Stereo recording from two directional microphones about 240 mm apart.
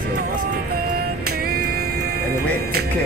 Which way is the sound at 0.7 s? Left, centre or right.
Right.